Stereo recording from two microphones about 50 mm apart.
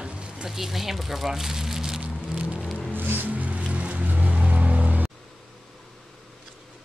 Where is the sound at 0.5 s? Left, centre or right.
Centre.